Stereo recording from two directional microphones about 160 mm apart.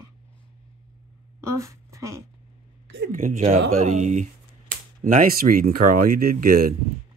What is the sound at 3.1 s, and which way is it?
Speech, 55° right (ahead or behind).